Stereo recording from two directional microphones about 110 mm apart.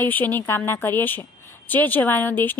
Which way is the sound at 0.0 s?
15° left (ahead or behind).